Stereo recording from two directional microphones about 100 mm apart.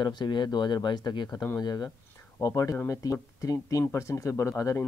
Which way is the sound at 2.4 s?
35° left (ahead or behind).